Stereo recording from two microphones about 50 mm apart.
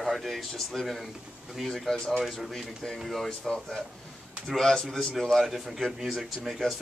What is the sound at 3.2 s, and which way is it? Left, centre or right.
Speech, centre.